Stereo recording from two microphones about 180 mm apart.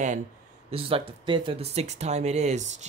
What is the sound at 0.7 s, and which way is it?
Speech, 30° right (ahead or behind).